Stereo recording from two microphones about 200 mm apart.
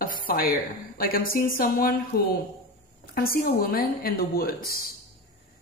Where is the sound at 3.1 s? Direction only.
50° left (ahead or behind).